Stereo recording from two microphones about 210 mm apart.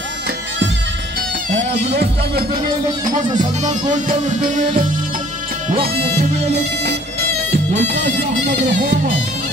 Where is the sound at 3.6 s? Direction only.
35° right (ahead or behind).